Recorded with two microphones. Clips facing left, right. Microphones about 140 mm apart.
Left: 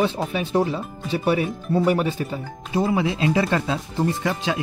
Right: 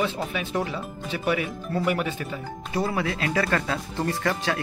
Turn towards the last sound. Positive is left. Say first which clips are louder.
# left 2 dB
turn(degrees=15)  # may be behind; listen again after turning